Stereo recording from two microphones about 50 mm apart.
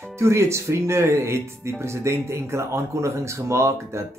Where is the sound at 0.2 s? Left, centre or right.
Right.